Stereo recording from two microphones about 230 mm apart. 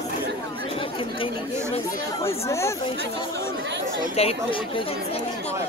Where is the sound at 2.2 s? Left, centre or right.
Centre.